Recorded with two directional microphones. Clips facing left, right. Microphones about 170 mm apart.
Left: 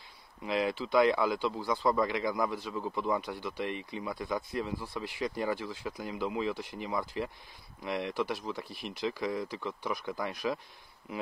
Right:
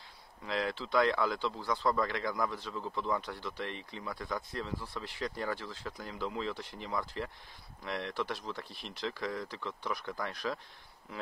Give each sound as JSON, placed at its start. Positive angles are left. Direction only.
{"t": 0.5, "sound": "speech", "side_deg": 15}